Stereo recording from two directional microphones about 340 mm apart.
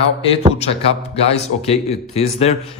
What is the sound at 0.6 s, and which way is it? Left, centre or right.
Speech, centre.